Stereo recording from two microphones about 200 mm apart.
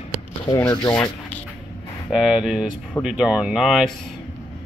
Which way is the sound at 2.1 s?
5° right (ahead or behind).